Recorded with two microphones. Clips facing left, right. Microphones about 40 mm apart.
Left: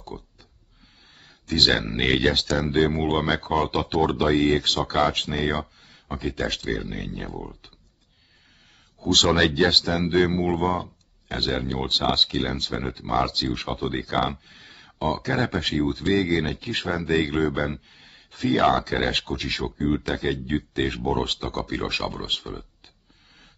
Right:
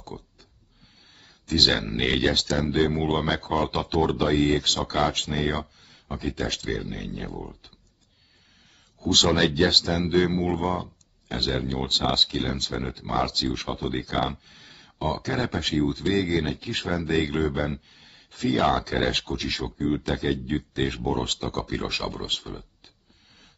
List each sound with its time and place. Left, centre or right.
0.1 s speech: centre
1.5 s speech: centre
9.0 s speech: centre